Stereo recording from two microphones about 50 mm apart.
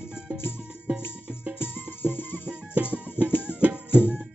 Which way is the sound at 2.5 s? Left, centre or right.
Right.